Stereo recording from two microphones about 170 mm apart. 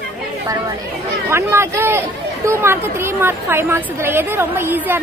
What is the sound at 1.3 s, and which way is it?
Speech, 15° right (ahead or behind).